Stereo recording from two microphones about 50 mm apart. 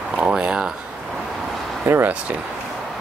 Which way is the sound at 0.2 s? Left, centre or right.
Right.